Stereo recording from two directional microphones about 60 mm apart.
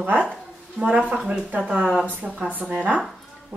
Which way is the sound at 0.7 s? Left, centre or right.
Right.